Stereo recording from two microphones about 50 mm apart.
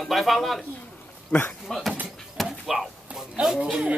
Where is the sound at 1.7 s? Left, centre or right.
Centre.